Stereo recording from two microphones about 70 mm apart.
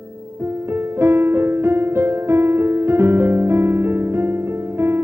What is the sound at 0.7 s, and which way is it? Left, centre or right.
Music, right.